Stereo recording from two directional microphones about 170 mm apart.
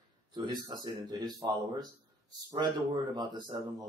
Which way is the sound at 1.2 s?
25° right (ahead or behind).